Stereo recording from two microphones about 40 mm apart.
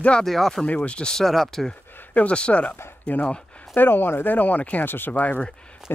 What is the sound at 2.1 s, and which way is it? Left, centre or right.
Speech, left.